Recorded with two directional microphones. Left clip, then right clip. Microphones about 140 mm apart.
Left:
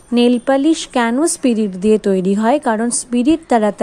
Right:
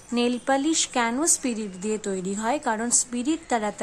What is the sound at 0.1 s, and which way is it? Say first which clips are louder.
A woman's voice: left 10 dB; 40° left (ahead or behind).